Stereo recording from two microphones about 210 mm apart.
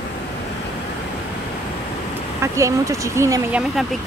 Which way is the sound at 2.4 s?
15° right (ahead or behind).